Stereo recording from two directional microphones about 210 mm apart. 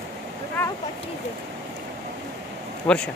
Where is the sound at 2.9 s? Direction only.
5° left (ahead or behind).